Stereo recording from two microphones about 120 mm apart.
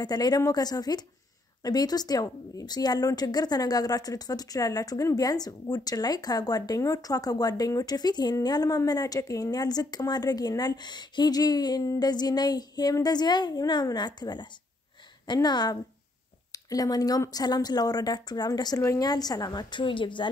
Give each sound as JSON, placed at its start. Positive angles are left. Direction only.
{"t": 0.0, "sound": "speech", "side_deg": 35}